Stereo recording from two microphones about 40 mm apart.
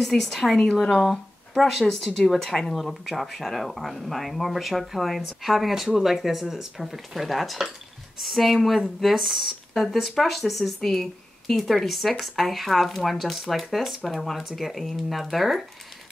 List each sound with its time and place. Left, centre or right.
0.0 s speech: centre